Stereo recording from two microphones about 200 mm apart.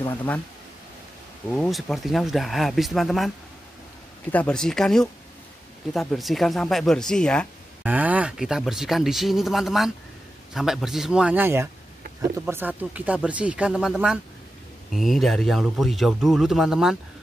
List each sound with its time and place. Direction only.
0.0 s speech: 10° left (ahead or behind)
1.5 s speech: centre (ahead or behind)
4.3 s speech: 5° left (ahead or behind)
7.8 s speech: 10° right (ahead or behind)